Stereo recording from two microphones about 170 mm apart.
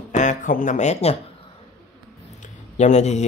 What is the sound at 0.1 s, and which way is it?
Speech, 45° left (ahead or behind).